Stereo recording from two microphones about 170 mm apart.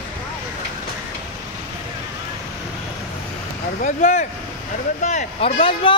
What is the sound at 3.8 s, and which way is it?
Speech, 50° left (ahead or behind).